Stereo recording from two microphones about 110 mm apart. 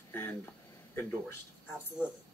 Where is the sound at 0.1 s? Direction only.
15° left (ahead or behind).